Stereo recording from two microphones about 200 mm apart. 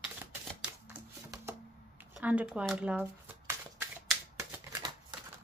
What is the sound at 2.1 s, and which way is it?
Shuffling cards, 5° right (ahead or behind).